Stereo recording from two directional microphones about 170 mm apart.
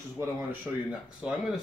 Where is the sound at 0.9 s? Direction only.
5° right (ahead or behind).